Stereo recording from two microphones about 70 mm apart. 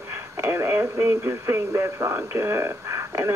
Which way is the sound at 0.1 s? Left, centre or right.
Right.